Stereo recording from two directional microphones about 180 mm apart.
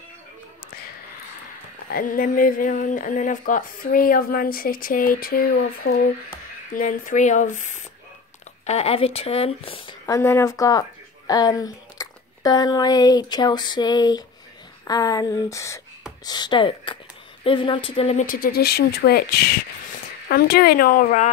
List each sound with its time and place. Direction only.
1.9 s speech: 50° left (ahead or behind)
6.7 s speech: 45° left (ahead or behind); by 9.9 s 30° left (ahead or behind)
10.0 s a woman's voice: 15° left (ahead or behind); by 18.2 s 30° left (ahead or behind)
18.2 s speech: 55° left (ahead or behind)